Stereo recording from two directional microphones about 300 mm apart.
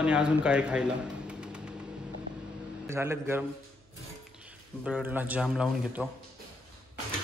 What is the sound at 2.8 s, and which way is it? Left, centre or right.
Speech, centre.